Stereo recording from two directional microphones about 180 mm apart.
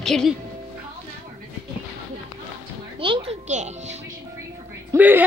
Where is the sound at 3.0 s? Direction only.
30° right (ahead or behind).